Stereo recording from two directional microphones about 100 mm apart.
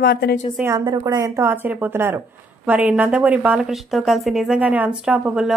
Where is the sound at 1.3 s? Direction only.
20° right (ahead or behind); by 4.6 s centre (ahead or behind).